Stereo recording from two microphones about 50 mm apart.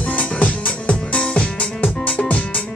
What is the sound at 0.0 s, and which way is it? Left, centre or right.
Music, left.